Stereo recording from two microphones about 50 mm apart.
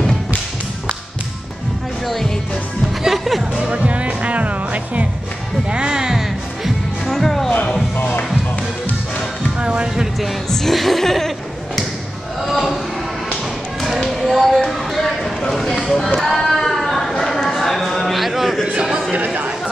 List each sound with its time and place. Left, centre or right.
3.0 s music: centre
3.5 s music: right
5.7 s music: centre
7.1 s music: centre
8.0 s music: left
9.6 s music: centre
10.5 s a sound: centre
13.3 s tap: centre
14.7 s music: centre
16.2 s a sound: centre
18.7 s a sound: centre